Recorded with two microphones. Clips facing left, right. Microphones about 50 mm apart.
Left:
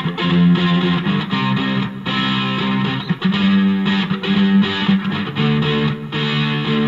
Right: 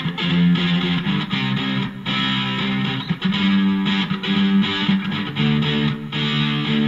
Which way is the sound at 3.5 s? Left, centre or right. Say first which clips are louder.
Left 2 dB; left.